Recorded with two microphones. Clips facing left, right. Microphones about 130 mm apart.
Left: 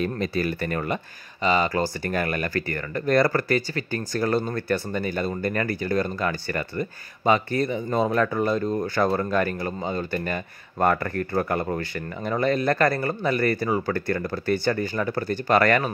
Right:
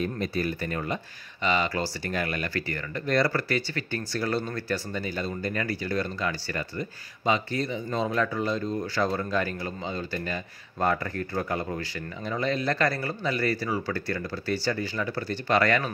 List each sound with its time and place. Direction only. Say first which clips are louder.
0.0 s speech: left 3 dB; 85° left; by 0.9 s 60° left (ahead or behind)
1.4 s speech: left 4 dB; 40° left (ahead or behind)